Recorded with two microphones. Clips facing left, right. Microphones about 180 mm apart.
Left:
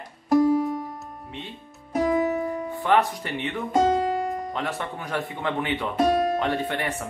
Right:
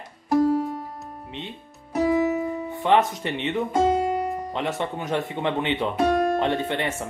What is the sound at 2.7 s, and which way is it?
Speech, 20° right (ahead or behind).